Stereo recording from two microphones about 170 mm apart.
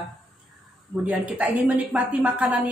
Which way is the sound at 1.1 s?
10° right (ahead or behind).